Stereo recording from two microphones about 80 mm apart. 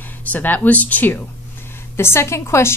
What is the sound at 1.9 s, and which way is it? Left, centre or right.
Speech, left.